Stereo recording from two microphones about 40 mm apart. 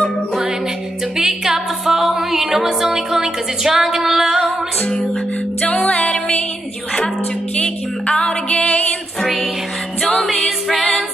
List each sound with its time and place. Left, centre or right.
1.1 s music: centre
5.9 s music: left
8.1 s music: centre